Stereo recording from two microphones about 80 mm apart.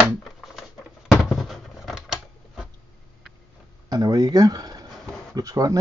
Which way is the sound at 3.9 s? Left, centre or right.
Right.